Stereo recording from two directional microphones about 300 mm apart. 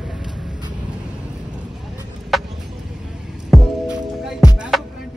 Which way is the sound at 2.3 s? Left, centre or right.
Centre.